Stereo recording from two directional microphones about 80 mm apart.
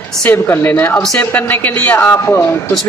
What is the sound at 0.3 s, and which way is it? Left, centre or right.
A man's voice, left.